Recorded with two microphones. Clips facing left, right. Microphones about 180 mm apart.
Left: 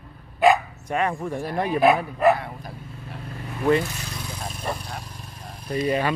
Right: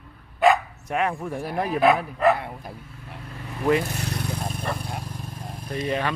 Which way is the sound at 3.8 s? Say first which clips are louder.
Right 5 dB; 60° right (ahead or behind).